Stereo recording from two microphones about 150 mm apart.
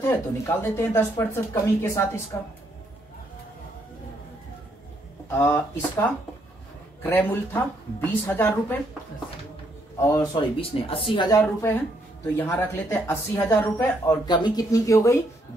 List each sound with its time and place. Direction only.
0.0 s speech: 20° left (ahead or behind)
5.3 s speech: 15° left (ahead or behind)
9.9 s speech: 20° left (ahead or behind)
10.3 s speech: 35° left (ahead or behind)
11.3 s speech: 15° left (ahead or behind)